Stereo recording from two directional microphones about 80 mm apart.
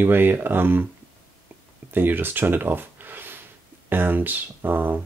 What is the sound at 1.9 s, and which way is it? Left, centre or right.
Speech, right.